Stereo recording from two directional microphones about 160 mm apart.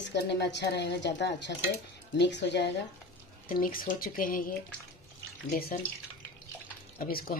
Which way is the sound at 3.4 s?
60° left (ahead or behind).